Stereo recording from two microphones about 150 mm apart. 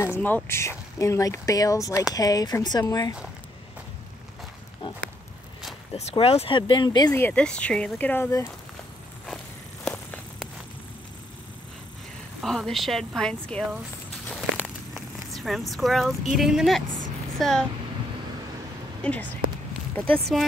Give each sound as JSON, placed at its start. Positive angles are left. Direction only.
{"t": 0.1, "sound": "speech", "side_deg": 15}
{"t": 5.9, "sound": "speech", "side_deg": 45}
{"t": 7.2, "sound": "speech", "side_deg": 10}
{"t": 9.8, "sound": "walk", "side_deg": 5}
{"t": 12.4, "sound": "speech", "side_deg": 0}
{"t": 14.2, "sound": "a sound", "side_deg": 0}
{"t": 15.3, "sound": "speech", "side_deg": 0}
{"t": 19.0, "sound": "speech", "side_deg": 5}